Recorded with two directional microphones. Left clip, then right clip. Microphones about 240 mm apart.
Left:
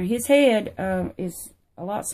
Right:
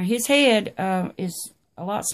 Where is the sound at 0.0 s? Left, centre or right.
Right.